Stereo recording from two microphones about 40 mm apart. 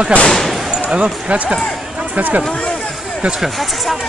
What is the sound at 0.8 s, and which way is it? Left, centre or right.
Speech, centre.